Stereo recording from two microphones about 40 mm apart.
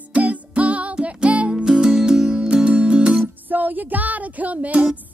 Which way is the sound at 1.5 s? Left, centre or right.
Centre.